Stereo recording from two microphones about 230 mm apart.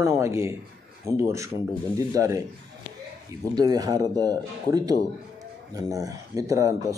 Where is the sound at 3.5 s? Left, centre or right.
Centre.